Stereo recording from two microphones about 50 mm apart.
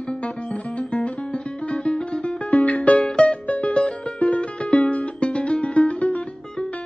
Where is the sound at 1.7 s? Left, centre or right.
Centre.